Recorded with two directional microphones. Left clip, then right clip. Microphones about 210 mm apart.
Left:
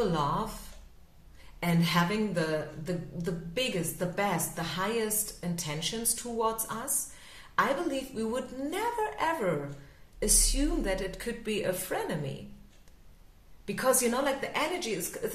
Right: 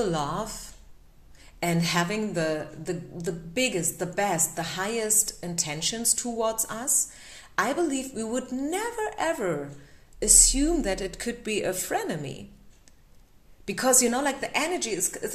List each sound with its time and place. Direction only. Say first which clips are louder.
0.0 s a woman's voice: right 1 dB; 40° right (ahead or behind)
1.6 s a woman's voice: right 3 dB; 40° right (ahead or behind)
13.7 s speech: right 4 dB; 40° right (ahead or behind)